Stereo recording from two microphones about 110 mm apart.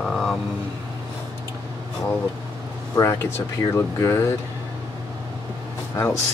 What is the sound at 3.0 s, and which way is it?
Speech, 25° left (ahead or behind).